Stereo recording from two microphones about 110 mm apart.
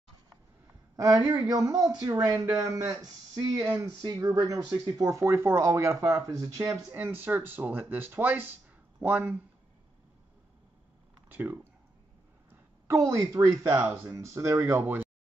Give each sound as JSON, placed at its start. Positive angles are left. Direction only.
{"t": 0.9, "sound": "a woman's voice", "side_deg": -30}
{"t": 11.2, "sound": "a sound", "side_deg": -15}
{"t": 12.8, "sound": "speech", "side_deg": -30}